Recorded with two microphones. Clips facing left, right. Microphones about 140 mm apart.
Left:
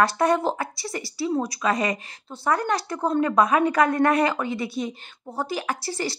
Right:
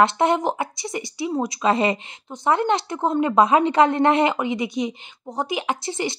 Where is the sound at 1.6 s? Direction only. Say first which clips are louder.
Right 4 dB; 25° right (ahead or behind).